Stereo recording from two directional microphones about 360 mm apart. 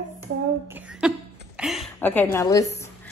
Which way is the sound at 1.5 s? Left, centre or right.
Centre.